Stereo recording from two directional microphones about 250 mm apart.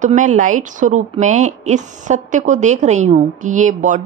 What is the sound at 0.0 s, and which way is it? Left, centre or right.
Speech, right.